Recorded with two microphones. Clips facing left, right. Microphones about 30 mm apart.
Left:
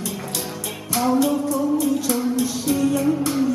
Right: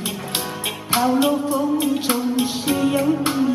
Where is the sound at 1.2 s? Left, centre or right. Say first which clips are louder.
Right 1 dB; right.